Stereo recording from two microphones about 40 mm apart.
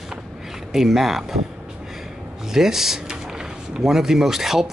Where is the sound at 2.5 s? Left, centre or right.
Centre.